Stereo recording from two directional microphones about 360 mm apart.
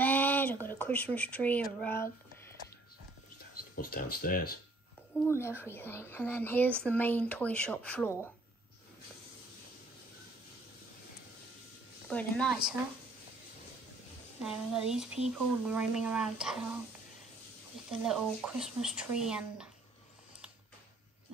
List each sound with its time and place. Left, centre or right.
0.0 s a sound: centre
3.7 s speech: left
5.2 s speech: centre
12.1 s speech: centre
14.4 s speech: centre
18.0 s speech: centre